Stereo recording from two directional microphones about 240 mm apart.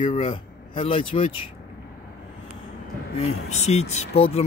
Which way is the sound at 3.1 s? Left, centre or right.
Left.